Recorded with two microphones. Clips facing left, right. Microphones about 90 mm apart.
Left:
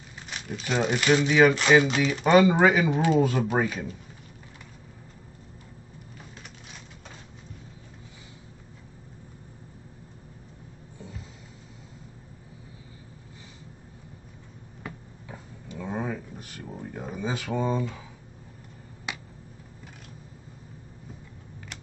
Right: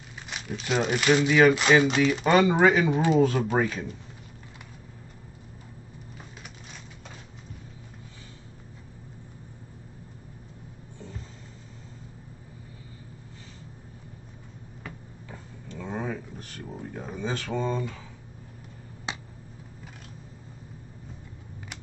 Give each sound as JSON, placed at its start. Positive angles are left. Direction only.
{"t": 0.3, "sound": "speech", "side_deg": -5}
{"t": 15.2, "sound": "a sound", "side_deg": 10}
{"t": 19.1, "sound": "finger snapping", "side_deg": -30}